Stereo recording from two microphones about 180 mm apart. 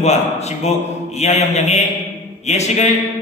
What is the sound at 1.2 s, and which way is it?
Speech, 40° left (ahead or behind).